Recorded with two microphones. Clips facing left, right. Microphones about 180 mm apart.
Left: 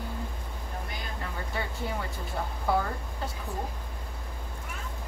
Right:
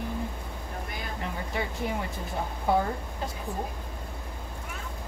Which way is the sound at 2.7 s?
20° right (ahead or behind).